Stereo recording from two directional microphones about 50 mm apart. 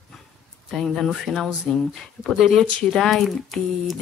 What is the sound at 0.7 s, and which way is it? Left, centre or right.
Speech, centre.